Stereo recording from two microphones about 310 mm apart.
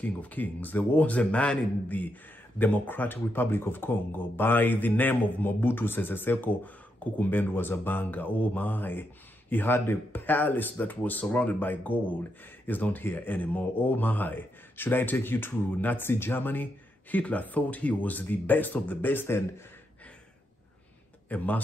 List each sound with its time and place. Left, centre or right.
0.0 s speech: centre
21.3 s speech: centre